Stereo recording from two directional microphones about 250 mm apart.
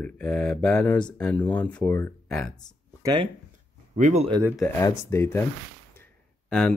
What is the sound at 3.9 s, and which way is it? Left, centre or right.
Speech, right.